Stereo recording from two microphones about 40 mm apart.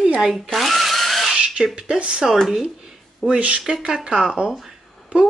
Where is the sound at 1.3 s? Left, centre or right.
Right.